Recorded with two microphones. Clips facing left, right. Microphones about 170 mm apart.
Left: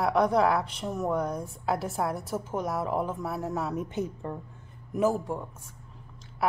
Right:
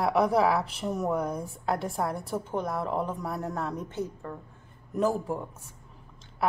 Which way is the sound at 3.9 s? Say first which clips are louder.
Left 2 dB; 20° left (ahead or behind).